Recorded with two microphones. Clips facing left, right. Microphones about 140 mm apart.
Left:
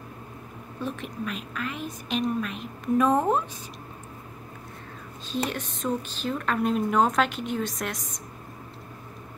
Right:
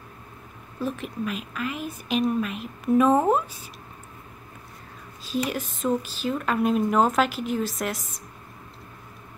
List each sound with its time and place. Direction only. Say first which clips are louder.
0.7 s a woman's voice: right 3 dB; centre (ahead or behind)
5.5 s a woman's voice: right 3 dB; 5° right (ahead or behind)